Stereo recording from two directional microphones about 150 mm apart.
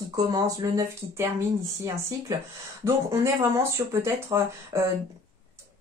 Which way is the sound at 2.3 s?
20° right (ahead or behind).